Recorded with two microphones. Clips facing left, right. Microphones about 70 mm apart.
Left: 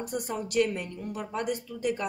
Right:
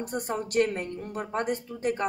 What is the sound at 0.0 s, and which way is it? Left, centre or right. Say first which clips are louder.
A woman's voice: right 2 dB; right.